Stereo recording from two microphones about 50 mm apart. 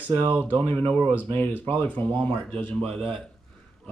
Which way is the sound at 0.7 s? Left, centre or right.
Left.